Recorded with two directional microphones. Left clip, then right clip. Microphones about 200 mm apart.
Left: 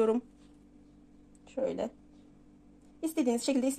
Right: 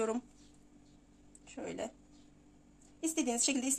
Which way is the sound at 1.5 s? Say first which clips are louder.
Left 9 dB; 30° left (ahead or behind).